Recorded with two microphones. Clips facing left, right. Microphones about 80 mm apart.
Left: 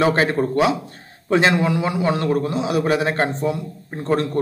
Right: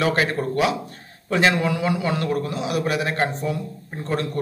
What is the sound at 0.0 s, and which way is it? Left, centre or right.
A man's voice, left.